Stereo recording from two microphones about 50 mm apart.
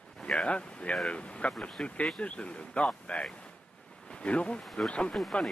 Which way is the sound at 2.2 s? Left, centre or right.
Left.